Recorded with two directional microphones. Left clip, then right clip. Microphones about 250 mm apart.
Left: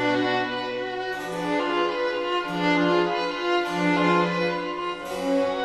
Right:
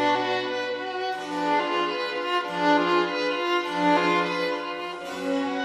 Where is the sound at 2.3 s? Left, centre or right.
Left.